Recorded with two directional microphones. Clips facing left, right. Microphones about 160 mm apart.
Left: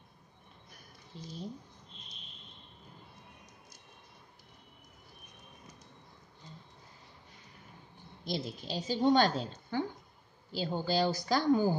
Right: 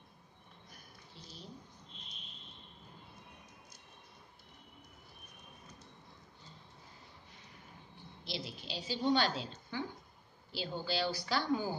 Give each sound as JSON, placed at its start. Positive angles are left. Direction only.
{"t": 1.1, "sound": "a woman's voice", "side_deg": 45}
{"t": 8.2, "sound": "a woman's voice", "side_deg": 45}
{"t": 9.7, "sound": "a sound", "side_deg": 50}
{"t": 10.5, "sound": "a woman's voice", "side_deg": 45}